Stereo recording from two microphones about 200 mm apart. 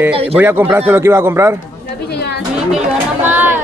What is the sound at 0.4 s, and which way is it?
Speech, 10° right (ahead or behind).